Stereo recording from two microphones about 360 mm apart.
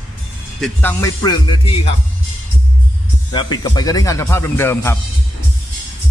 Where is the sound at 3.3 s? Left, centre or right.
Centre.